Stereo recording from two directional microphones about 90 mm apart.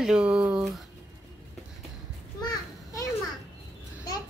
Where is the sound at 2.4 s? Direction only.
50° left (ahead or behind).